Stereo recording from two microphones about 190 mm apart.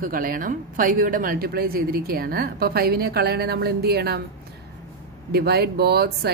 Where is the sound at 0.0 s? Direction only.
50° right (ahead or behind).